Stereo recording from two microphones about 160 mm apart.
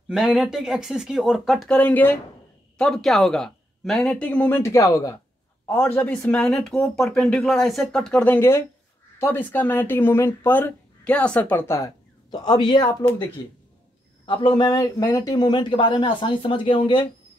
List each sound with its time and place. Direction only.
0.1 s speech: centre (ahead or behind); by 11.9 s 15° left (ahead or behind)
12.3 s speech: 25° left (ahead or behind)
14.2 s speech: 30° left (ahead or behind)